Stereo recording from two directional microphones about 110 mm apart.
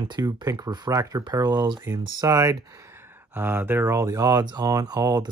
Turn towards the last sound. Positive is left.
turn(degrees=-35)  # may be behind; listen again after turning